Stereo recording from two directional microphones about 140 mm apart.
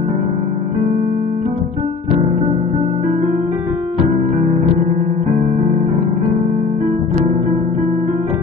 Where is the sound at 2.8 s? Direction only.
55° right (ahead or behind).